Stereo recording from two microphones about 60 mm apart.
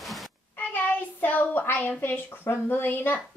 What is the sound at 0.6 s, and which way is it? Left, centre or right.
A woman's voice, left.